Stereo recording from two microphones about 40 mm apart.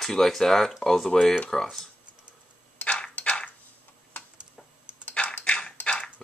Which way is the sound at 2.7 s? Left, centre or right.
Left.